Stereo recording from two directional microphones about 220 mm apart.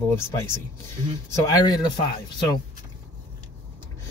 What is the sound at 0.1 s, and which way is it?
Speech, 10° left (ahead or behind).